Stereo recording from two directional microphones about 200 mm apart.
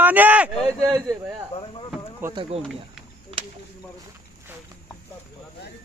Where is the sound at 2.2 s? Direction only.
25° right (ahead or behind).